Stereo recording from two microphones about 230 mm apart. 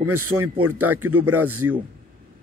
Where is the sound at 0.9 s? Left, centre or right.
Right.